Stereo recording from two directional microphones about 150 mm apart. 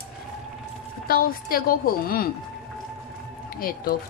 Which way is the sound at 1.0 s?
75° left (ahead or behind).